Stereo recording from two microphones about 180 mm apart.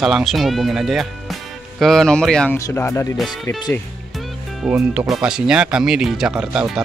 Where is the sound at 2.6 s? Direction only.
15° left (ahead or behind).